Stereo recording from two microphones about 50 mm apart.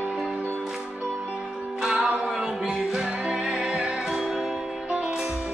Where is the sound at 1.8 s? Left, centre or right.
Centre.